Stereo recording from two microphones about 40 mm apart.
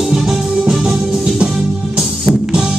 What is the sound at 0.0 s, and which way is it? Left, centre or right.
Music, centre.